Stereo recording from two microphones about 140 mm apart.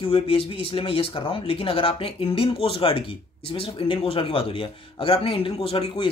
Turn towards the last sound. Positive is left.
turn(degrees=40)  # may be behind; listen again after turning